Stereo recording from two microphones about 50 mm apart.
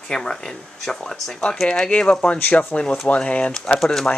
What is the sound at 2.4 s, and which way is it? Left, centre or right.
Speech, left.